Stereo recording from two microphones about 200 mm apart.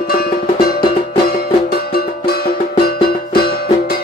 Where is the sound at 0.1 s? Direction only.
50° left (ahead or behind).